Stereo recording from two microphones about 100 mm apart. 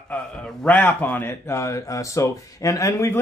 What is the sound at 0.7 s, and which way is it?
Speech, 15° left (ahead or behind).